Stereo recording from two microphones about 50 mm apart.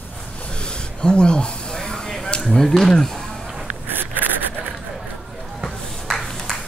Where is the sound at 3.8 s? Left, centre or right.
Right.